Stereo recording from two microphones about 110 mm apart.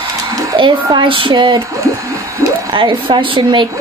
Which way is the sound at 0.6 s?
50° right (ahead or behind).